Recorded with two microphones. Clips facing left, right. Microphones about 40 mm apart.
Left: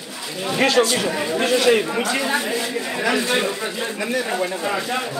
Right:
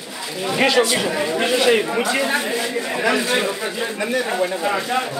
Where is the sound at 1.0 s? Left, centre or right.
Centre.